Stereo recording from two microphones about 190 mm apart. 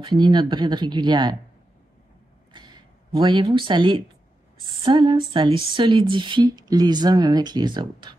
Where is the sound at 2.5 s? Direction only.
25° right (ahead or behind).